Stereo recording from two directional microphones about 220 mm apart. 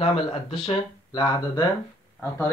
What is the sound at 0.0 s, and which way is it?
Speech, 25° left (ahead or behind).